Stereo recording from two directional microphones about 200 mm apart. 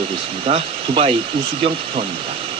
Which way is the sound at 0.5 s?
30° right (ahead or behind).